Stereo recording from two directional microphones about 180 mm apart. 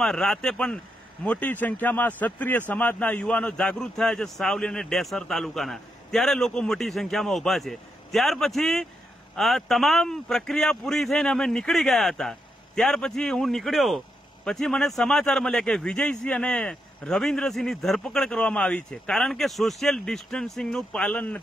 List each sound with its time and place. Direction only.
0.0 s speech: centre (ahead or behind)